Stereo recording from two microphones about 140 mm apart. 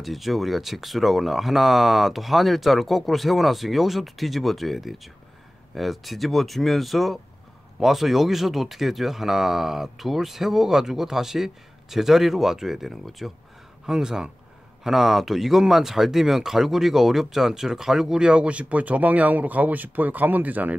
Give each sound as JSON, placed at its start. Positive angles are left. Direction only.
{"t": 0.0, "sound": "speech", "side_deg": 0}